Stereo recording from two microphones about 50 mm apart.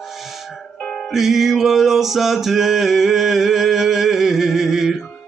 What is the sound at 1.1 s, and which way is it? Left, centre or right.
Music, centre.